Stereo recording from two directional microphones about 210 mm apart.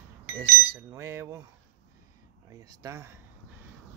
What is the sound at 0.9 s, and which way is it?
Speech, 15° right (ahead or behind).